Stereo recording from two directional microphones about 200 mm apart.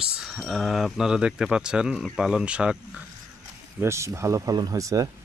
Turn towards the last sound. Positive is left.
turn(degrees=-15)  # may be behind; listen again after turning